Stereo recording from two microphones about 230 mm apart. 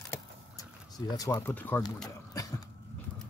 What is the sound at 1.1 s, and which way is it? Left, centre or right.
Speech, centre.